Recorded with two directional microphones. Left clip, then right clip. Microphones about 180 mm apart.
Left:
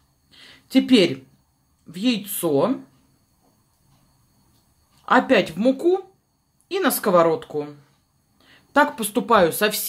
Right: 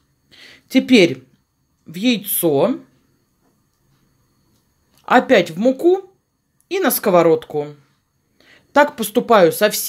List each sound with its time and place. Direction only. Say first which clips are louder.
0.3 s a sound: right 3 dB; 35° right (ahead or behind)
1.9 s speech: right 5 dB; 40° right (ahead or behind)
5.0 s speech: right 4 dB; 35° right (ahead or behind)